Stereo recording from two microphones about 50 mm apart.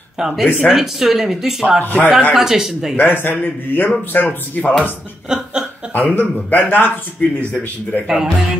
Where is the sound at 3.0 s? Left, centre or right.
Left.